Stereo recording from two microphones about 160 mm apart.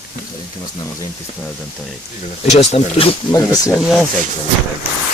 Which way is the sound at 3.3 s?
25° left (ahead or behind).